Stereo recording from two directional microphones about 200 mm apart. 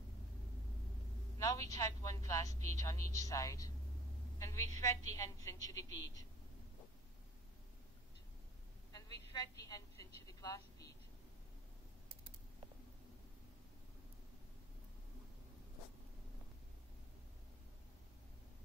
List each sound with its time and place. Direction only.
1.4 s a woman's voice: 15° left (ahead or behind)
5.9 s a man's voice: 70° left (ahead or behind)
8.9 s a woman's voice: 20° left (ahead or behind)